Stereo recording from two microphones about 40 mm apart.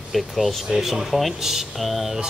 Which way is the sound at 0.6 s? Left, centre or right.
Centre.